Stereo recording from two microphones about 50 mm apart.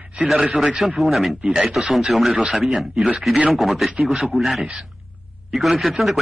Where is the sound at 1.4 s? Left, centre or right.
Right.